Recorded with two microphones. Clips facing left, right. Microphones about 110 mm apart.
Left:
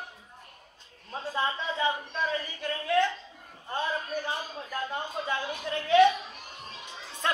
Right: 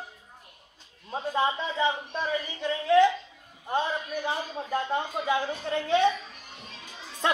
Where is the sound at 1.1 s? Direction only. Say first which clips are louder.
Right 4 dB; 20° right (ahead or behind).